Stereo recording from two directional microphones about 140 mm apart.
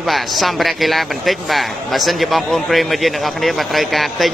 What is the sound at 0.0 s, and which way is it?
A man's voice, centre (ahead or behind).